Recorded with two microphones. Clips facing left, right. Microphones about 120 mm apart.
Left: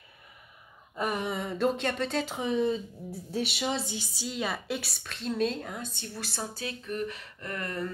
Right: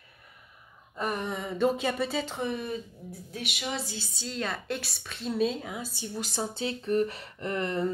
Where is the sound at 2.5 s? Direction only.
25° left (ahead or behind); by 6.0 s 5° right (ahead or behind).